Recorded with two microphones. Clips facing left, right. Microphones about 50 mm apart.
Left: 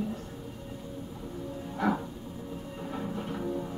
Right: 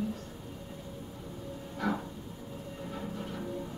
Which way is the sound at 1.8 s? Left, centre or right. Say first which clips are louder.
Left 4 dB; centre.